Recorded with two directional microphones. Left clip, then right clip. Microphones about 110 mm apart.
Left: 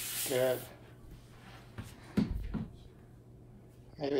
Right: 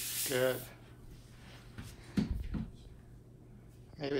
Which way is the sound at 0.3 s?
Centre (ahead or behind).